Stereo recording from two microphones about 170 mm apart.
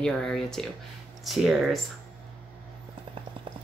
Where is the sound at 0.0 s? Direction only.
5° left (ahead or behind).